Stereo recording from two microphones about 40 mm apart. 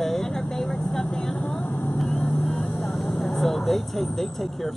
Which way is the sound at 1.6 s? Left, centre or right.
Left.